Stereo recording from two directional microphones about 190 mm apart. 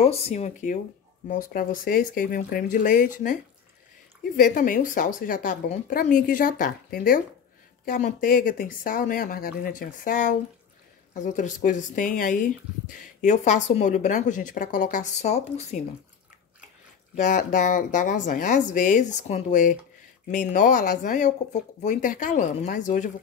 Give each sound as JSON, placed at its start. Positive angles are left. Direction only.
{"t": 0.0, "sound": "a woman's voice", "side_deg": 30}
{"t": 17.1, "sound": "a woman's voice", "side_deg": 40}